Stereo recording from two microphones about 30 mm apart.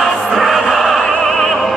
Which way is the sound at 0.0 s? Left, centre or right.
Centre.